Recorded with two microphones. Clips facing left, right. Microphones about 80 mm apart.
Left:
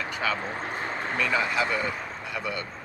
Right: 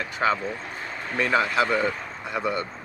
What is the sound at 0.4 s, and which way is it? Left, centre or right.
Vehicle, left.